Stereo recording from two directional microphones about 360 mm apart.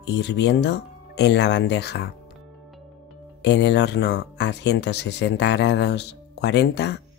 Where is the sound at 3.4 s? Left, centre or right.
Left.